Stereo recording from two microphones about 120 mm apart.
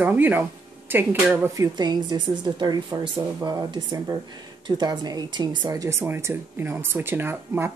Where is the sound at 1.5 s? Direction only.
30° right (ahead or behind).